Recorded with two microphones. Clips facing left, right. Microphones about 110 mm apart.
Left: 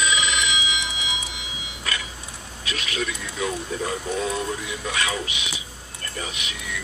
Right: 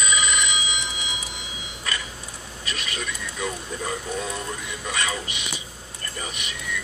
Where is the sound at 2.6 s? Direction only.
Centre (ahead or behind).